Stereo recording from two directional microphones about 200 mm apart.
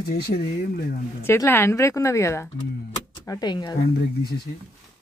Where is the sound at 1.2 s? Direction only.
10° left (ahead or behind).